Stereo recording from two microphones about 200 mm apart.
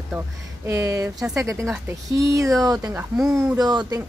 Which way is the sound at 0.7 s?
15° right (ahead or behind).